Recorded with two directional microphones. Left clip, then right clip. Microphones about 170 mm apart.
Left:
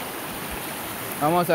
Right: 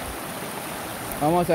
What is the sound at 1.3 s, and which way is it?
Speech, 15° right (ahead or behind).